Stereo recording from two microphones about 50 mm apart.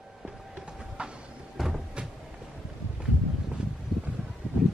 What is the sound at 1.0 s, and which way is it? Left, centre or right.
Vehicle, right.